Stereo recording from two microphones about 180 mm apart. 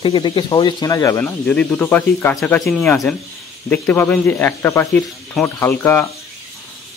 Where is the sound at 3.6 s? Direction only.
15° left (ahead or behind).